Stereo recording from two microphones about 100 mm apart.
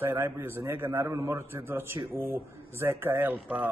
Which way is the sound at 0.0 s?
25° right (ahead or behind).